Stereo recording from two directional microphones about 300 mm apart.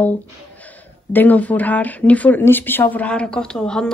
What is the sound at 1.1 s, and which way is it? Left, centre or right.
Speech, centre.